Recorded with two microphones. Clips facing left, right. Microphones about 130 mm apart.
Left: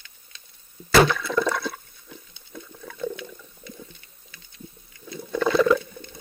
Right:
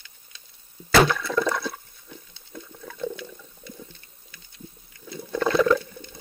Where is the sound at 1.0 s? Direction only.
Centre (ahead or behind).